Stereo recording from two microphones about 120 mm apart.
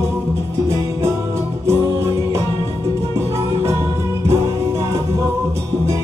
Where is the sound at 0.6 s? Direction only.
25° right (ahead or behind).